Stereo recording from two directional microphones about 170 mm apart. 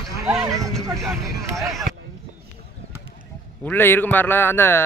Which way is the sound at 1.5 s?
Centre (ahead or behind).